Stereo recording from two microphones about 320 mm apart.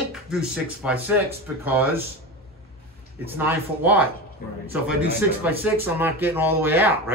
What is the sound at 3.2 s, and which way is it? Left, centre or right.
Speech, centre.